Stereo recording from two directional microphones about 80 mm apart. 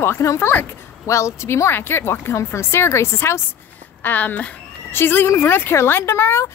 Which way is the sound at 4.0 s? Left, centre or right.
Left.